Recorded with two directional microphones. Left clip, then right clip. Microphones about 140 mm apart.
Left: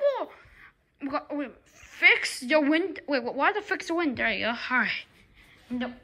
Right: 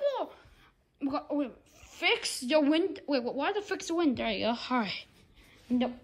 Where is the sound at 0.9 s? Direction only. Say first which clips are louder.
Left 1 dB; 30° left (ahead or behind).